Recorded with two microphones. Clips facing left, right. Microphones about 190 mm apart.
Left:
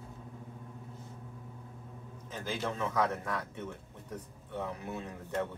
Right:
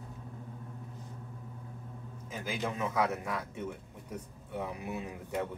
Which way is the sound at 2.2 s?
10° right (ahead or behind).